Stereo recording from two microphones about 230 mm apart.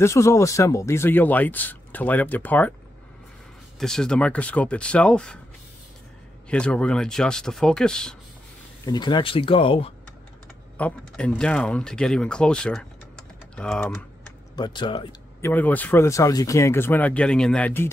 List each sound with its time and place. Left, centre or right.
0.0 s speech: centre
3.8 s speech: centre
6.5 s speech: centre
8.8 s speech: centre
10.8 s speech: centre
14.5 s a man's voice: centre
15.5 s speech: centre